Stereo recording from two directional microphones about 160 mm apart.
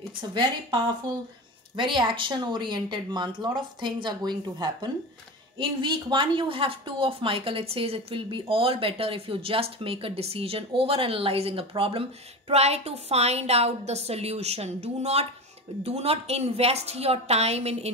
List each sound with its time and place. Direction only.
0.1 s speech: 30° right (ahead or behind)
1.8 s a woman's voice: 30° right (ahead or behind)